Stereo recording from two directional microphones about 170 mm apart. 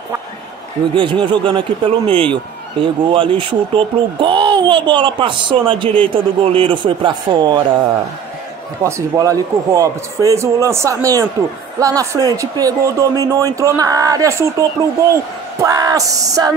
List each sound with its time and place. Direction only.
0.9 s speech: 30° right (ahead or behind)
8.8 s speech: 20° right (ahead or behind)
15.6 s speech: 20° right (ahead or behind)